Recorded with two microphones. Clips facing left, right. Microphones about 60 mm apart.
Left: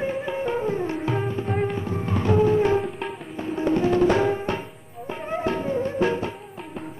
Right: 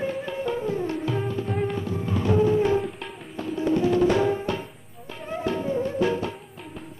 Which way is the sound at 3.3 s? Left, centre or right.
Left.